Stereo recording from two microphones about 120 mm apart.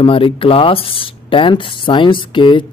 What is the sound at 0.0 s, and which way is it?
Speech, 50° left (ahead or behind).